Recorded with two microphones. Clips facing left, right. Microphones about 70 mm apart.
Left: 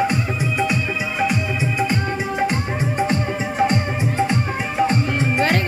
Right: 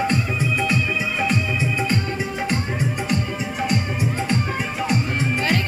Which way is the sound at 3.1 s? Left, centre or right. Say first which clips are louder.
Left 3 dB; left.